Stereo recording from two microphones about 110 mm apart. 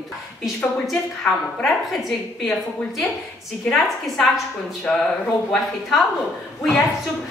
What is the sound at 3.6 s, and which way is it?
A woman's voice, 5° left (ahead or behind).